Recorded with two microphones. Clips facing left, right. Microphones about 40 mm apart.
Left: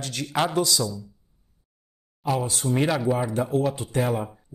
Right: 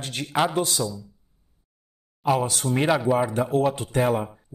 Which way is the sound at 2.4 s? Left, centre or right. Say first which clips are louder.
Right 2 dB; right.